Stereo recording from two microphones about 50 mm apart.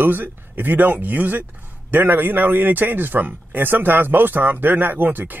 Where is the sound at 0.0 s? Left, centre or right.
Right.